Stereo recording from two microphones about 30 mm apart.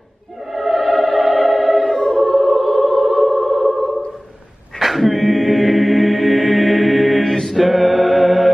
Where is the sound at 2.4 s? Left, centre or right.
Centre.